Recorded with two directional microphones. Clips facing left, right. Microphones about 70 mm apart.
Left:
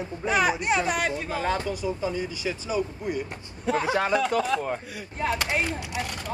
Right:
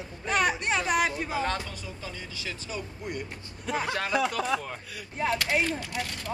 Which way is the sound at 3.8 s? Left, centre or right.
Centre.